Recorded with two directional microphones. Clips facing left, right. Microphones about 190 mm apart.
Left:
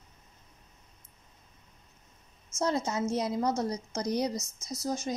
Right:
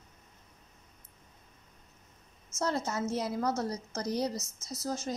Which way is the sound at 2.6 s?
20° left (ahead or behind).